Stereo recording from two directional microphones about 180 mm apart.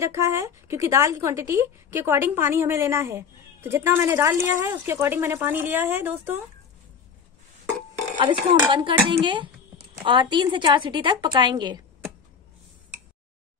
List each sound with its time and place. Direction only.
0.0 s a woman's voice: 15° right (ahead or behind)
8.2 s a woman's voice: 25° right (ahead or behind)